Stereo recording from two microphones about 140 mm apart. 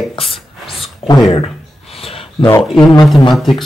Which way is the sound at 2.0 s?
40° left (ahead or behind).